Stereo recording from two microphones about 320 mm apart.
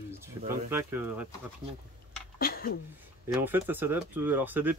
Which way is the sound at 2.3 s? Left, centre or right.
Left.